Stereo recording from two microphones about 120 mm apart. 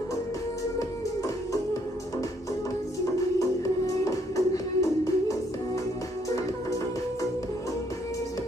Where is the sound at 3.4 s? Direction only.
25° left (ahead or behind).